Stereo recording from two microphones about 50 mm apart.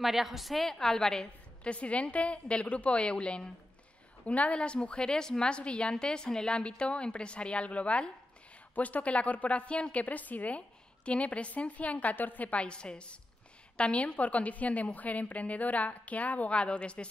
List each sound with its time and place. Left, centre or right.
0.0 s a woman's voice: centre
1.6 s a woman's voice: left